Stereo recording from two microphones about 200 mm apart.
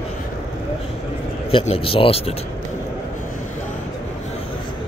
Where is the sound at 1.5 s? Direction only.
30° left (ahead or behind).